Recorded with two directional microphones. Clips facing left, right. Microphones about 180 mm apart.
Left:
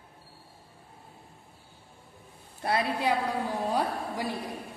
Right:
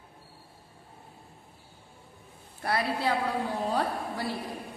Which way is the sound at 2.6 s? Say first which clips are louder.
Left 1 dB; 20° left (ahead or behind).